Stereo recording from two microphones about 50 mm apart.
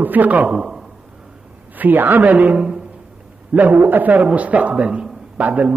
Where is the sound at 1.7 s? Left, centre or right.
Right.